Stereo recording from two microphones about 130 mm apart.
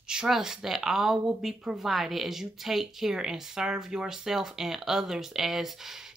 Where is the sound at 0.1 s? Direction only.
5° right (ahead or behind).